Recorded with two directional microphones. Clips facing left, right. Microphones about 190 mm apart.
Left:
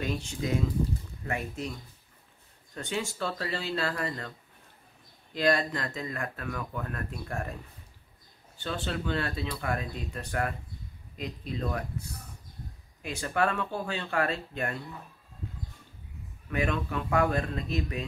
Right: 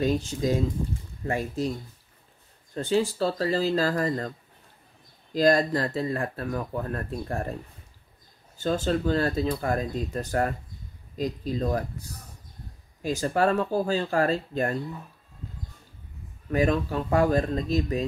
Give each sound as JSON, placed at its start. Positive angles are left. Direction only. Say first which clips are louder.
{"t": 0.0, "sound": "speech", "louder": "right 7 dB", "side_deg": -35}
{"t": 5.3, "sound": "speech", "louder": "right 6 dB", "side_deg": -40}
{"t": 8.5, "sound": "speech", "louder": "right 8 dB", "side_deg": -40}
{"t": 16.4, "sound": "speech", "louder": "right 6 dB", "side_deg": -35}